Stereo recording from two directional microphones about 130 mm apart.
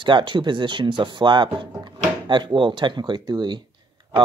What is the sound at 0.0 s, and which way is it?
Speech, 40° right (ahead or behind).